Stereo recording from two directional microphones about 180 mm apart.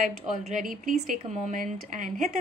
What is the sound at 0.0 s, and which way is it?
A woman's voice, 45° right (ahead or behind).